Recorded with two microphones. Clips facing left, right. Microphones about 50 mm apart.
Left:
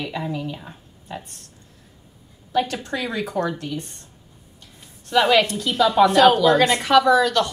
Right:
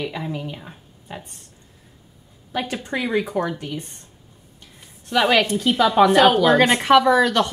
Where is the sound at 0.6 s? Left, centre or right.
Centre.